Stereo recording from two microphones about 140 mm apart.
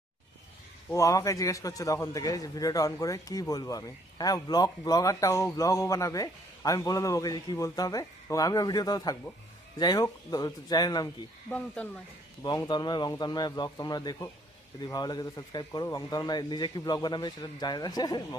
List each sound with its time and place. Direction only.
0.9 s a man's voice: 25° left (ahead or behind)
11.5 s speech: 10° left (ahead or behind)
12.4 s a man's voice: 30° left (ahead or behind)